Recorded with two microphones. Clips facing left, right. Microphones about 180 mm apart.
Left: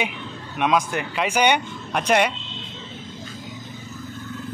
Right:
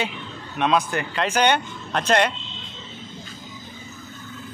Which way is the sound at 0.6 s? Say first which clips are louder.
Even; 10° left (ahead or behind).